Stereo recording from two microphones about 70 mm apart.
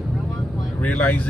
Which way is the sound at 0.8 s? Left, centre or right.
Left.